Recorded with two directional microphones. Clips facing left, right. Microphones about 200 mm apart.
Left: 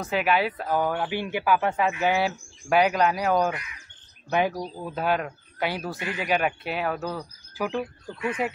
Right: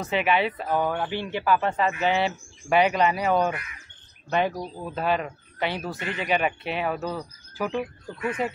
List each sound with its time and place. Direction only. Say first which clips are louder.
0.0 s speech: even; centre (ahead or behind)